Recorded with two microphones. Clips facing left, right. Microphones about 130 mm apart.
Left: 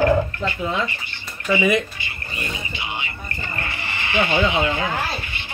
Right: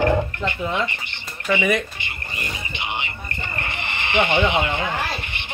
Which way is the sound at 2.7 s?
20° right (ahead or behind).